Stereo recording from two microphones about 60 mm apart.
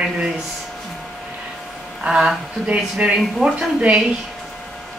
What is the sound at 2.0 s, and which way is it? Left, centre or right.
A woman's voice, centre.